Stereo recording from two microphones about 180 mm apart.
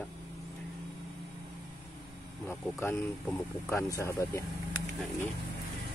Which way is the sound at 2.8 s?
15° left (ahead or behind).